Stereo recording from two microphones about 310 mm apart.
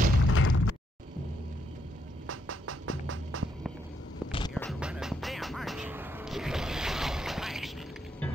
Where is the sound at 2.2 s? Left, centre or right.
Right.